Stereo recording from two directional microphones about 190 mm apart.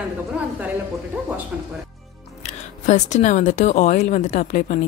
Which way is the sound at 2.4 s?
35° left (ahead or behind).